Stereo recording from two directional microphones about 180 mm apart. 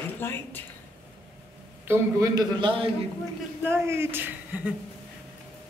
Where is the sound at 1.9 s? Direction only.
15° right (ahead or behind).